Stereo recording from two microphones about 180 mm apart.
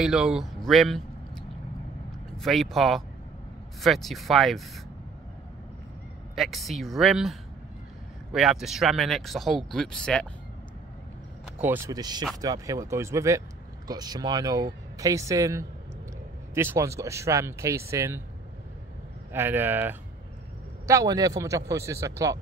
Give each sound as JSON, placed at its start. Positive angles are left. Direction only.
{"t": 0.0, "sound": "speech", "side_deg": -5}
{"t": 0.7, "sound": "vehicle", "side_deg": 0}
{"t": 2.3, "sound": "speech", "side_deg": 0}
{"t": 6.3, "sound": "speech", "side_deg": 0}
{"t": 11.6, "sound": "speech", "side_deg": -15}
{"t": 19.3, "sound": "speech", "side_deg": -10}